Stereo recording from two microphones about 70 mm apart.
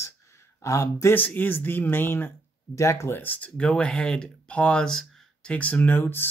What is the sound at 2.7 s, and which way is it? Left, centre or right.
Speech, left.